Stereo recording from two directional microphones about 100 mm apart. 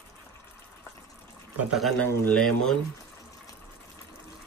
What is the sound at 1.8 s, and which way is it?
Speech, centre (ahead or behind).